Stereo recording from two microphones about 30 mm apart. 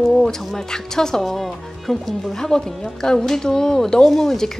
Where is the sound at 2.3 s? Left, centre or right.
Centre.